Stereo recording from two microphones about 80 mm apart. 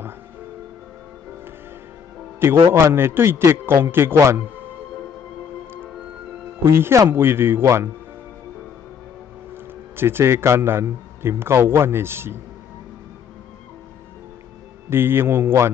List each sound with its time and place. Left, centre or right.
2.7 s a man's voice: right
6.6 s a man's voice: right
9.9 s a man's voice: right
14.9 s a man's voice: right